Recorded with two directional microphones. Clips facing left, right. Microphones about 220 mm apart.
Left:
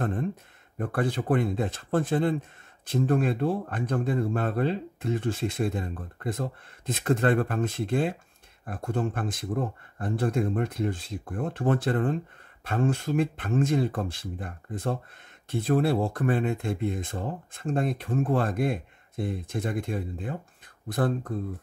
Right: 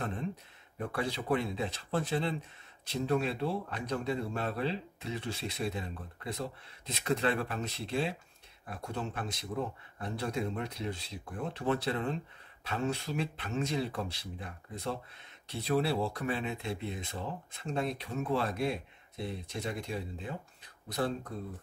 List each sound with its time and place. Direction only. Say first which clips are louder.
0.0 s a man's voice: left 7 dB; 50° left (ahead or behind)